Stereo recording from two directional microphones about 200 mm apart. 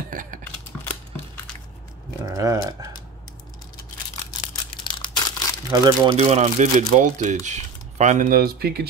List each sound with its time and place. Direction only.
0.1 s a sound: 40° right (ahead or behind)
0.4 s a sound: 10° left (ahead or behind)
2.2 s speech: 15° right (ahead or behind)
4.8 s crumpling: 20° left (ahead or behind)
5.7 s speech: 20° right (ahead or behind)
6.1 s speech: 35° right (ahead or behind); by 8.8 s 50° right (ahead or behind)